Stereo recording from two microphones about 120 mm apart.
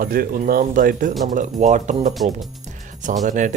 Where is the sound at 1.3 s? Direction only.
85° right.